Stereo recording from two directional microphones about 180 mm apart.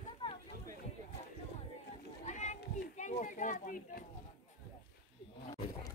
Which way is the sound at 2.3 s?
40° left (ahead or behind).